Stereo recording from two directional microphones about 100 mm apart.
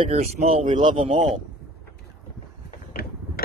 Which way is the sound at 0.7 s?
65° right (ahead or behind).